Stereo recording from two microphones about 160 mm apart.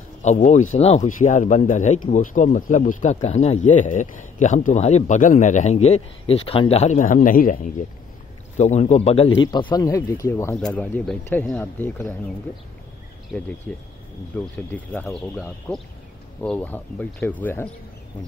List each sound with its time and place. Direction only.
0.2 s speech: 50° left (ahead or behind)
9.5 s speech: 30° left (ahead or behind); by 12.2 s 10° left (ahead or behind)
13.7 s speech: 5° left (ahead or behind)